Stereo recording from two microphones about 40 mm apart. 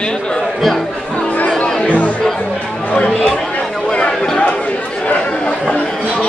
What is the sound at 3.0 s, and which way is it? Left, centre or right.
Chatter, centre.